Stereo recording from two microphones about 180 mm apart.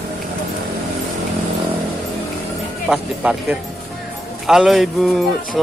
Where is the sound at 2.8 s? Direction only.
5° right (ahead or behind).